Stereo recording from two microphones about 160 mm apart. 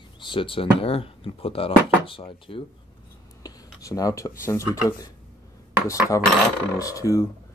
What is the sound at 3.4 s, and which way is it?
Speech, 20° left (ahead or behind).